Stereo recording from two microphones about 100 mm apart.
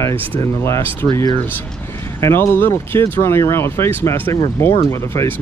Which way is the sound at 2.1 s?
30° left (ahead or behind).